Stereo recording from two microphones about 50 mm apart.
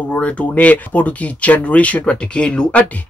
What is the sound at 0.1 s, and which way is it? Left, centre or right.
Speech, left.